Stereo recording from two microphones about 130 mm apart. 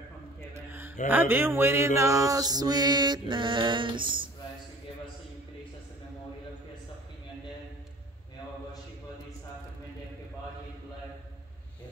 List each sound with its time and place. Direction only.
1.0 s a man's voice: 15° right (ahead or behind)
2.0 s mantra: 25° right (ahead or behind)